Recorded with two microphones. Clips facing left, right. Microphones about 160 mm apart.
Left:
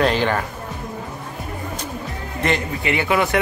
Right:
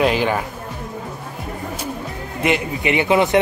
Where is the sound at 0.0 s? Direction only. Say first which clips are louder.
Right 1 dB; 5° right (ahead or behind).